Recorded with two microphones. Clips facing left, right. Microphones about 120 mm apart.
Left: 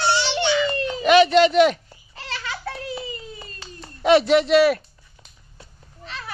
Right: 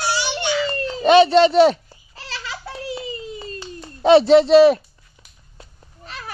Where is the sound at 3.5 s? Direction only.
30° right (ahead or behind).